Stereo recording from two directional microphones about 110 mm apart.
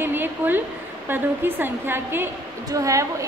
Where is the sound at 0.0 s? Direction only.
20° right (ahead or behind).